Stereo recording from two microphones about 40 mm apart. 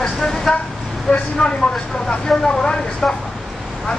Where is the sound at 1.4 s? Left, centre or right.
Left.